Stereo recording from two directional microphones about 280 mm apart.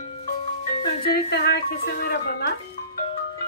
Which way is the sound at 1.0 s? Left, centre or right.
Left.